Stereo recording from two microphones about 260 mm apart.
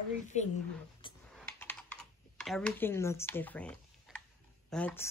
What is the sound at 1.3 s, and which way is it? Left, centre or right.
Computer keyboard, centre.